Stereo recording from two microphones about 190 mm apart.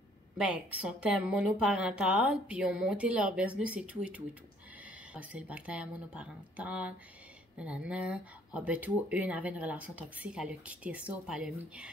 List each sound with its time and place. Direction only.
0.4 s speech: 5° right (ahead or behind)